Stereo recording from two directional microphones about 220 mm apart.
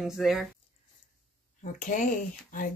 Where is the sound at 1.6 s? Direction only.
35° left (ahead or behind).